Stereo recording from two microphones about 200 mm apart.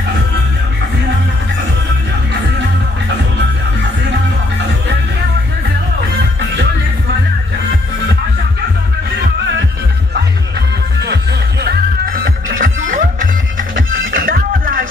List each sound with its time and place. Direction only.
11.6 s music: 50° right (ahead or behind)
13.7 s music: 70° right (ahead or behind)
14.2 s music: 45° right (ahead or behind)